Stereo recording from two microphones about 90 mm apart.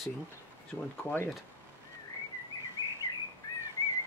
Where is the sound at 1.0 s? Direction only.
25° left (ahead or behind).